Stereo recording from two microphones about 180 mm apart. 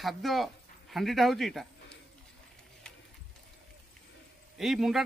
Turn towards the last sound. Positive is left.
turn(degrees=0)  # may be behind; listen again after turning